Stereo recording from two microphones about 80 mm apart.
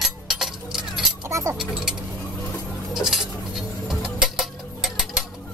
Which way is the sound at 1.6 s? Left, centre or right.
Centre.